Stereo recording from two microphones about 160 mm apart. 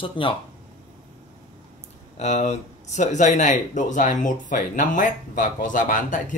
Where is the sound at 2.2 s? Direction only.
45° left (ahead or behind).